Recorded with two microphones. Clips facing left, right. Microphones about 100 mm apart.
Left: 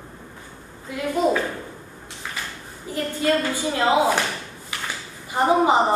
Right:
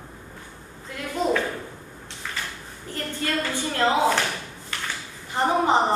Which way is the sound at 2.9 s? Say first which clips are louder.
Left 6 dB; 10° left (ahead or behind).